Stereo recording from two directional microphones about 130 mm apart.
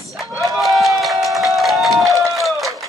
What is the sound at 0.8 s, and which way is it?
Run, centre (ahead or behind).